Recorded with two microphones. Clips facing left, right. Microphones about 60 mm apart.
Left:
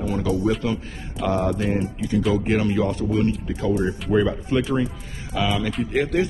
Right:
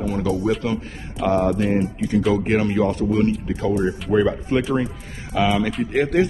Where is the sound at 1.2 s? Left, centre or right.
Right.